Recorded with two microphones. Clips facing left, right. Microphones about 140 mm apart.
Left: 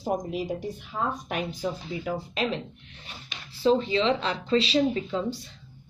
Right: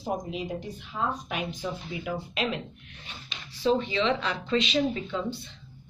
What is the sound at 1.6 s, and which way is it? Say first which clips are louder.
Speech: left 3 dB; 35° left (ahead or behind).